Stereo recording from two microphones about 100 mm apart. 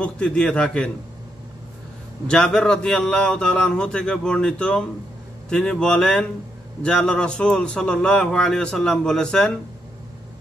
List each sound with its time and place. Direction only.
0.0 s a man's voice: 10° left (ahead or behind)
2.2 s a man's voice: 10° left (ahead or behind)